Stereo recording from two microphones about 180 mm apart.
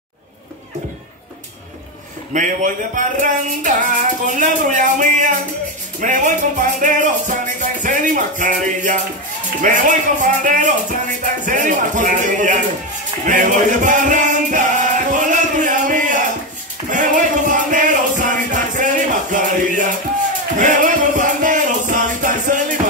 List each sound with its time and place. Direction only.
2.3 s speech: 45° right (ahead or behind)
13.2 s music: 45° right (ahead or behind)